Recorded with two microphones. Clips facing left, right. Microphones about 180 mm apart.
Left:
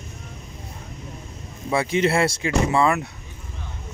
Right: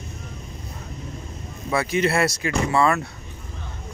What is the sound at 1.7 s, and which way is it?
Speech, 25° left (ahead or behind).